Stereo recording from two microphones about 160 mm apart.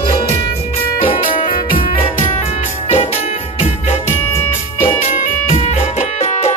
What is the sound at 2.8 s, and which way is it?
Music, 40° left (ahead or behind).